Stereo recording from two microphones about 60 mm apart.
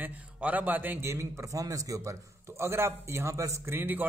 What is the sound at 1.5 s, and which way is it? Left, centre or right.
Speech, right.